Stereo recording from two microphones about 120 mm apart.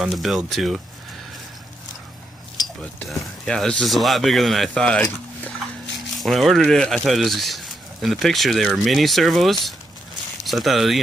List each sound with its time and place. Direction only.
0.0 s speech: centre (ahead or behind)
3.1 s speech: 5° left (ahead or behind)